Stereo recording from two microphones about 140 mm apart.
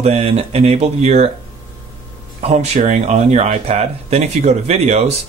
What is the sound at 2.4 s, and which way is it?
Speech, 50° right (ahead or behind).